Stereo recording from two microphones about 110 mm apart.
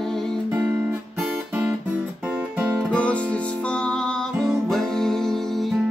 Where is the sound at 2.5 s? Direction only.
15° right (ahead or behind).